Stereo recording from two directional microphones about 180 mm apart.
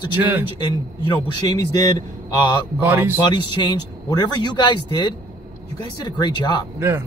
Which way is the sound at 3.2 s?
25° left (ahead or behind).